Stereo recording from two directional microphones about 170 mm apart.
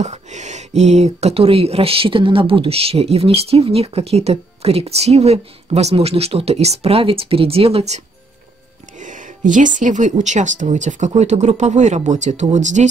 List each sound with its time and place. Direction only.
0.0 s speech: 45° right (ahead or behind)
9.0 s speech: 50° right (ahead or behind)